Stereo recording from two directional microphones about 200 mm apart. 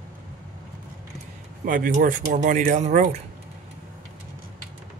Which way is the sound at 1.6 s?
45° right (ahead or behind).